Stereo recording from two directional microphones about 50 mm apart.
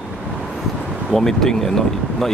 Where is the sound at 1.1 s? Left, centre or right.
Centre.